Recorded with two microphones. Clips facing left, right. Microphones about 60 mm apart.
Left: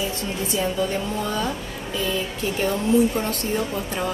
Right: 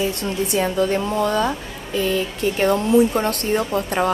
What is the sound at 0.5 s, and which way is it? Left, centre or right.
Speech, right.